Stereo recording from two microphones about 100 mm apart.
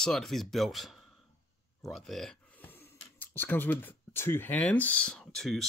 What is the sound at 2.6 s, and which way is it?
Speech, 20° left (ahead or behind).